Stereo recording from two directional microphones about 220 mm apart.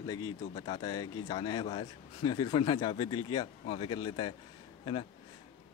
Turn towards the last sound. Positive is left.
turn(degrees=25)  # may be behind; listen again after turning